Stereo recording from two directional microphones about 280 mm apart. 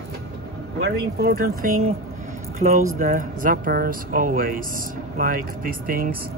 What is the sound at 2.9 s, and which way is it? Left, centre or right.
Speech, right.